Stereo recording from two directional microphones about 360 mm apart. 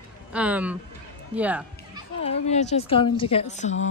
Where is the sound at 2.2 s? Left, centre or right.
Centre.